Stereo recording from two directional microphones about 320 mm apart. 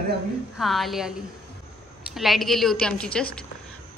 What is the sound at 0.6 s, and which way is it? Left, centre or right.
Speech, centre.